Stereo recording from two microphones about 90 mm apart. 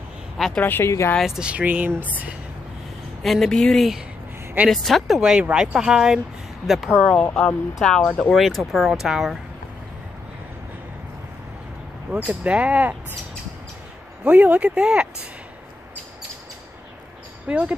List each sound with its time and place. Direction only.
0.6 s speech: 25° left (ahead or behind)
1.2 s speech: 10° right (ahead or behind)
3.2 s speech: centre (ahead or behind)
12.3 s speech: 15° right (ahead or behind)
14.2 s speech: 20° right (ahead or behind)
17.5 s speech: 15° right (ahead or behind)